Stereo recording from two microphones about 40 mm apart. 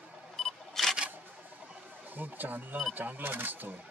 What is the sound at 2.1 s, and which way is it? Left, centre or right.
Speech, right.